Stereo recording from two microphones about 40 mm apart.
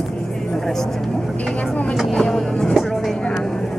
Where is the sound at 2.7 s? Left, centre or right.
Centre.